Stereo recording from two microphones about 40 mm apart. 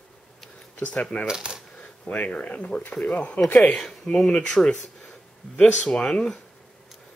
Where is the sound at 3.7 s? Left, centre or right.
Centre.